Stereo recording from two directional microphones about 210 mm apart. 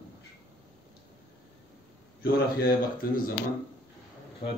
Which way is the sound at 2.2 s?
45° left (ahead or behind).